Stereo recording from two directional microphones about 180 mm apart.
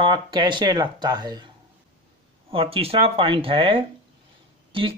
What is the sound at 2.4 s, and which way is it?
Speech, 30° right (ahead or behind).